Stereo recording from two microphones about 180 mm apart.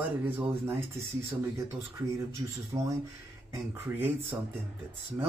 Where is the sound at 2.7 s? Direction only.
25° right (ahead or behind).